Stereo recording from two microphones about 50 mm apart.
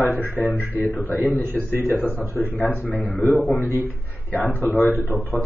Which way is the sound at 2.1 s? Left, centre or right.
Left.